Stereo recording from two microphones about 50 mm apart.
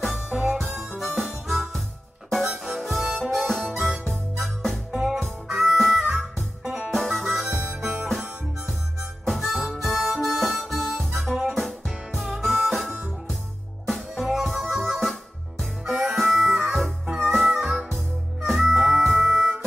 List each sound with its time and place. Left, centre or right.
0.3 s harmonica: centre
0.7 s harmonica: centre
3.7 s harmonica: centre
4.1 s music: centre
5.5 s harmonica: centre
6.6 s music: centre
6.9 s music: centre
7.8 s harmonica: centre
11.4 s music: centre
14.3 s music: centre